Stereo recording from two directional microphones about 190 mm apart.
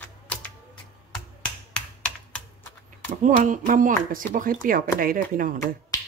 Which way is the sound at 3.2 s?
40° right (ahead or behind).